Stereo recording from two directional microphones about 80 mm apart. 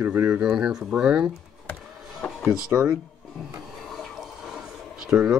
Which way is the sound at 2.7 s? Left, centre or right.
Right.